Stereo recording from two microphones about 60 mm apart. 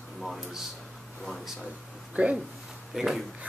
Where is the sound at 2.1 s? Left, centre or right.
Right.